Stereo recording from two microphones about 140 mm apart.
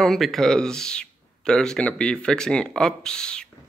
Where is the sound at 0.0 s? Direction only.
Centre (ahead or behind).